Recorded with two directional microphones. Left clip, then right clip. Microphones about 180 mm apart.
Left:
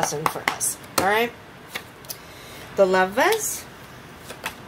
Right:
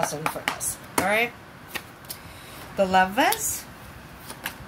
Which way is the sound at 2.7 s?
35° left (ahead or behind).